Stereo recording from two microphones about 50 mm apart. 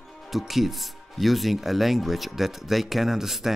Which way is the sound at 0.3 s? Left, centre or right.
Centre.